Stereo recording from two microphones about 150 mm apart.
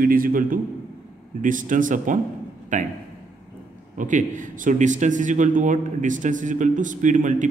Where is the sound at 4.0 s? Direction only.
60° right (ahead or behind).